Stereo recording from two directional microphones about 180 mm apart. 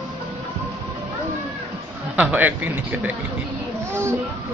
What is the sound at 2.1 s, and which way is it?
Speech, 10° right (ahead or behind).